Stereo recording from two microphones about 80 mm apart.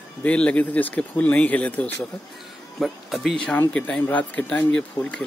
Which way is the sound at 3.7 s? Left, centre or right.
Centre.